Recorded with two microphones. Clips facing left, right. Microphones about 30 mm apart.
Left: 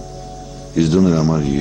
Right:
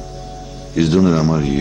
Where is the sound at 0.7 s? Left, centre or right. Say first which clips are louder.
Even; centre.